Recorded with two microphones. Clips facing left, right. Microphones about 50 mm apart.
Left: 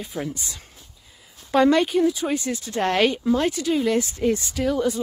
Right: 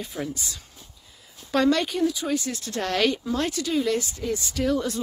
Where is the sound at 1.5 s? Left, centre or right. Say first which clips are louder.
Left 4 dB; centre.